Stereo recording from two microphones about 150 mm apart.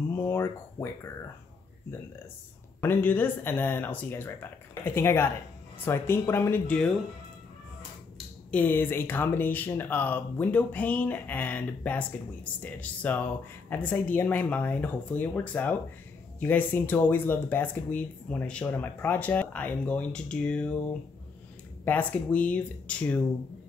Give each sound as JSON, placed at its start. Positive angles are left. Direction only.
{"t": 0.1, "sound": "speech", "side_deg": 15}
{"t": 2.8, "sound": "speech", "side_deg": 15}
{"t": 8.5, "sound": "speech", "side_deg": 10}
{"t": 21.8, "sound": "speech", "side_deg": 10}